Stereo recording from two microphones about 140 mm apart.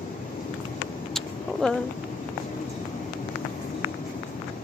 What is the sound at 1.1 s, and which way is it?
Vehicle, 5° left (ahead or behind).